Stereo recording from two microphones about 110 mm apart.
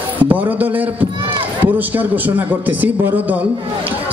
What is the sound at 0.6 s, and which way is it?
A man's voice, 15° right (ahead or behind).